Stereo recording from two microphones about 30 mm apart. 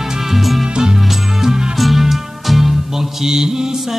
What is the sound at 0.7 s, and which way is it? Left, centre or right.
Music, right.